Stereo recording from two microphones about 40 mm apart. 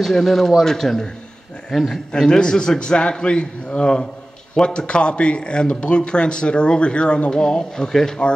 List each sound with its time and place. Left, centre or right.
0.0 s a man's voice: centre
2.1 s speech: centre